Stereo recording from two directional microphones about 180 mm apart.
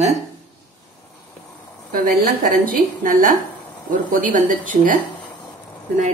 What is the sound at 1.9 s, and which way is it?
A woman's voice, 50° right (ahead or behind).